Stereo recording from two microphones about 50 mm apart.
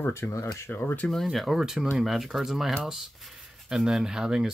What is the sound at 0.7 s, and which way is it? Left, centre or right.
Speech, left.